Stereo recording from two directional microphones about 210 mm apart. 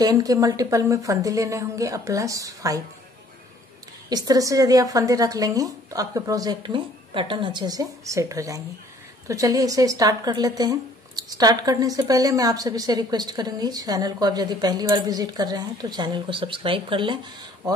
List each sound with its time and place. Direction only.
0.0 s speech: 15° right (ahead or behind)
4.1 s speech: 15° right (ahead or behind)